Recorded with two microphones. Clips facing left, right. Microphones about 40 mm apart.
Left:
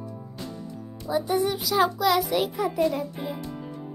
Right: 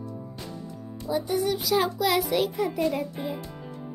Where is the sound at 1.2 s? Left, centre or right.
Centre.